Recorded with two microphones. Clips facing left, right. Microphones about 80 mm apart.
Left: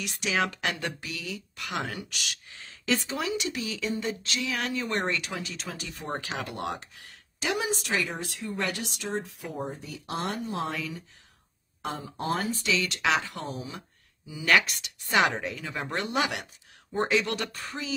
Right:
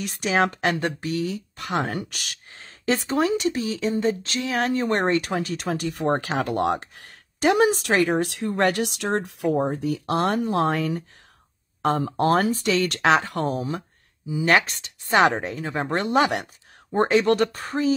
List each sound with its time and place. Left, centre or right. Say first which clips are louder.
0.0 s speech: right 6 dB; right
14.2 s speech: right 4 dB; right